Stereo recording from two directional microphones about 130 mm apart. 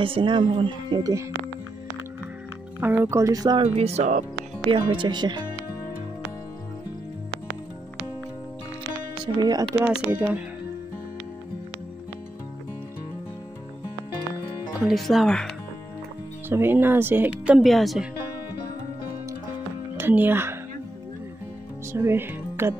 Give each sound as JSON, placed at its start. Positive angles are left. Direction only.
{"t": 0.0, "sound": "speech", "side_deg": -40}
{"t": 2.8, "sound": "speech", "side_deg": -20}
{"t": 3.6, "sound": "speech", "side_deg": -55}
{"t": 4.6, "sound": "speech", "side_deg": -40}
{"t": 9.2, "sound": "speech", "side_deg": -30}
{"t": 9.8, "sound": "speech", "side_deg": -15}
{"t": 14.9, "sound": "speech", "side_deg": 0}
{"t": 16.4, "sound": "speech", "side_deg": -15}
{"t": 20.0, "sound": "speech", "side_deg": -15}
{"t": 21.9, "sound": "speech", "side_deg": -20}